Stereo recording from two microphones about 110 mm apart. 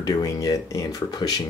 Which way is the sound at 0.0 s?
35° left (ahead or behind).